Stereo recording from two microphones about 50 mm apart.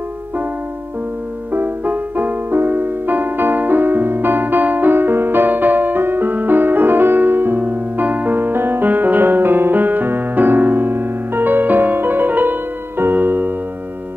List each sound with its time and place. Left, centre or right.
1.5 s music: right